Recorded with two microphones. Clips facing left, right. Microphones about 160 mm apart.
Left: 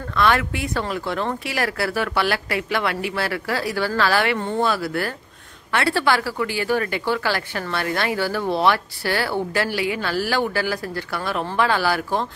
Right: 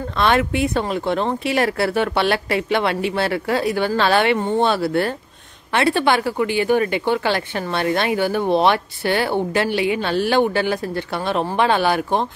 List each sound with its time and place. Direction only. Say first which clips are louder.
0.2 s speech: right 3 dB; 25° right (ahead or behind)